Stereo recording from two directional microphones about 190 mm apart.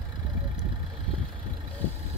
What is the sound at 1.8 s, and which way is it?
Vehicle, 10° left (ahead or behind).